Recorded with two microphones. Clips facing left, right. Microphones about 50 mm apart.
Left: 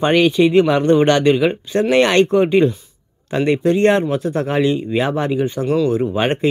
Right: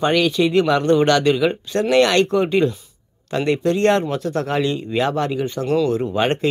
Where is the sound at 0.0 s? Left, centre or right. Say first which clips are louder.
Left 4 dB; left.